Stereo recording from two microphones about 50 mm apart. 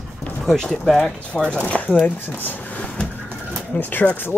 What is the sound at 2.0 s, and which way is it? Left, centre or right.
Speech, left.